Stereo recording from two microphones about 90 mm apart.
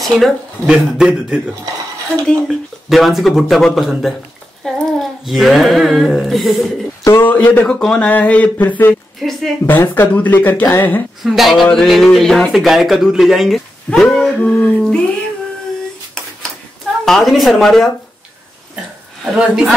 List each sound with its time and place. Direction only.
0.0 s speech: 5° right (ahead or behind)
7.1 s speech: 25° left (ahead or behind)
8.1 s a sound: 15° left (ahead or behind)
9.7 s speech: 20° left (ahead or behind)
11.2 s speech: centre (ahead or behind)
13.8 s a sound: 10° left (ahead or behind)
17.0 s speech: centre (ahead or behind)
19.3 s speech: 5° right (ahead or behind)